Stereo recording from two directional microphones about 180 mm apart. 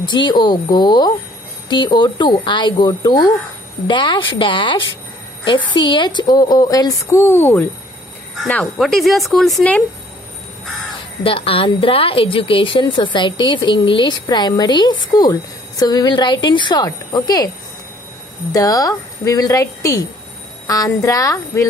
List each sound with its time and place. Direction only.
0.0 s a woman's voice: 25° left (ahead or behind); by 9.8 s 5° left (ahead or behind)
11.2 s a woman's voice: 30° left (ahead or behind)
18.5 s a woman's voice: 20° left (ahead or behind)